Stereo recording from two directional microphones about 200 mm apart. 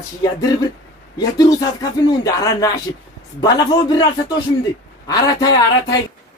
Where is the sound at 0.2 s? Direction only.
20° left (ahead or behind).